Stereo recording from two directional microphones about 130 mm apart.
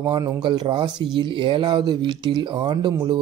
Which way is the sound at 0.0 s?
30° right (ahead or behind).